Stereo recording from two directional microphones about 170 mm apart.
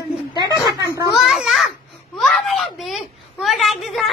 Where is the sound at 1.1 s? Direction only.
Centre (ahead or behind).